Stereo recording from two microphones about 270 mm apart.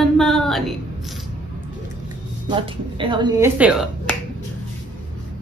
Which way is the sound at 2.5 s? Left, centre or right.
Centre.